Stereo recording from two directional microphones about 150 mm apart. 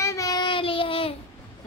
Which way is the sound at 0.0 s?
20° left (ahead or behind).